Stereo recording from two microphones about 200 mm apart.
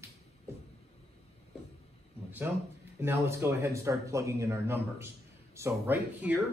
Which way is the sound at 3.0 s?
10° right (ahead or behind).